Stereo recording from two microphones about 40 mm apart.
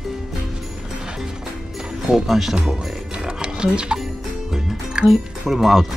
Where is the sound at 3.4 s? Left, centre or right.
Right.